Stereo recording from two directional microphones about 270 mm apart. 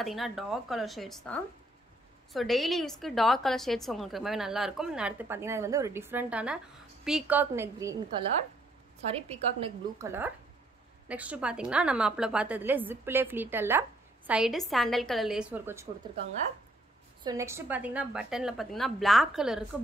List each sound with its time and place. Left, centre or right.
0.0 s a woman's voice: centre
9.3 s a woman's voice: right
11.1 s a woman's voice: centre
17.2 s a woman's voice: centre